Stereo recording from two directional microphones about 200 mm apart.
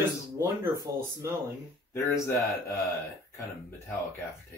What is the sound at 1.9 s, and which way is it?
Speech, 15° left (ahead or behind).